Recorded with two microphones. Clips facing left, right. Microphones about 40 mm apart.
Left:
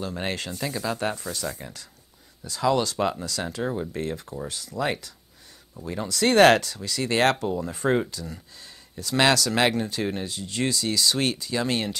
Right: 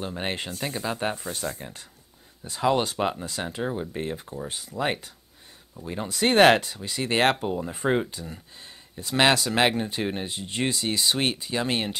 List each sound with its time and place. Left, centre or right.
0.2 s speech: right